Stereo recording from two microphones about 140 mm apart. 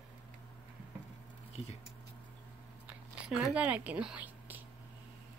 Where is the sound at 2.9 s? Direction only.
5° right (ahead or behind).